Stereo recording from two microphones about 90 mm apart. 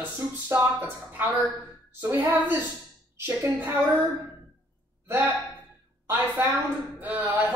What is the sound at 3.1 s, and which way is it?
Speech, 25° right (ahead or behind).